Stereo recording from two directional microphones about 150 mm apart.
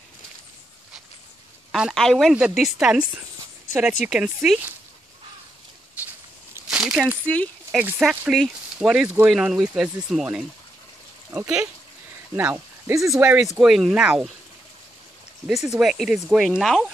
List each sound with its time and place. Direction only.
1.7 s speech: centre (ahead or behind)
6.0 s a sound: 10° right (ahead or behind)
7.7 s speech: 5° right (ahead or behind); by 13.1 s 20° right (ahead or behind)
13.6 s speech: 5° right (ahead or behind)
15.4 s speech: 5° right (ahead or behind)